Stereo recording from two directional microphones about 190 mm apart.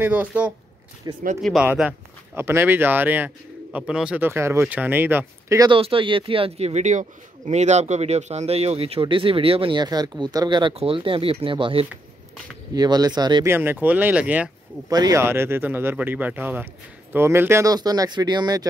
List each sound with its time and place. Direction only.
0.0 s speech: 10° right (ahead or behind)
1.1 s speech: 20° right (ahead or behind)
1.4 s speech: centre (ahead or behind)
5.7 s speech: 30° right (ahead or behind); by 14.5 s 5° right (ahead or behind)
14.9 s speech: 20° right (ahead or behind)